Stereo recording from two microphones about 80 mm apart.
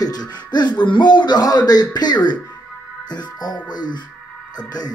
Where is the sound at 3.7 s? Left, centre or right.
Left.